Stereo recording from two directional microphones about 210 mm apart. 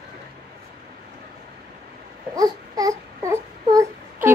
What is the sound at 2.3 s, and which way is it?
Baby cry, 15° right (ahead or behind).